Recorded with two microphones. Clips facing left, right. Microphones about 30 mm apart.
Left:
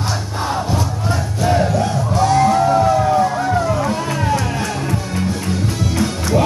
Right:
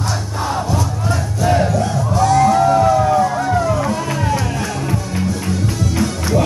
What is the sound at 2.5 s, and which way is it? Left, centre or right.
Music, centre.